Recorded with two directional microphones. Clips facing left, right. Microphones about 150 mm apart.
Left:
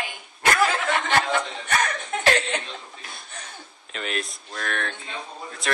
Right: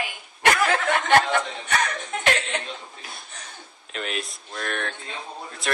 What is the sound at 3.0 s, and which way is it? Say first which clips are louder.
Chuckle: right 1 dB; centre (ahead or behind).